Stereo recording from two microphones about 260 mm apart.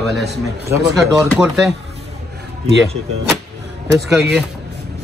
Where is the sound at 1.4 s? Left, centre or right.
Centre.